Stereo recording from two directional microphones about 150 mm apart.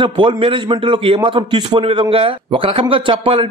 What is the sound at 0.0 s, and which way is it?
A man's voice, 35° right (ahead or behind).